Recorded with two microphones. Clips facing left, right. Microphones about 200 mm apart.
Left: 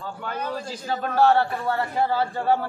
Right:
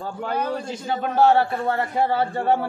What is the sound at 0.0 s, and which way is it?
A man's voice, 35° right (ahead or behind).